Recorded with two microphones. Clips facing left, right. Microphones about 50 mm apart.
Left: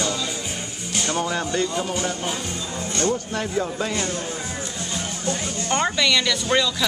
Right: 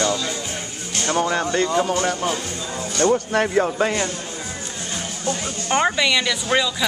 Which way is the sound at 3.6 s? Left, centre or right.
Right.